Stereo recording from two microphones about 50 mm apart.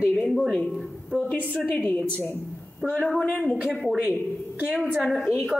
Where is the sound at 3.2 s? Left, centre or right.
Centre.